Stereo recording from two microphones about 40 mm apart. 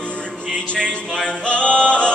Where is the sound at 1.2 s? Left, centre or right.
Left.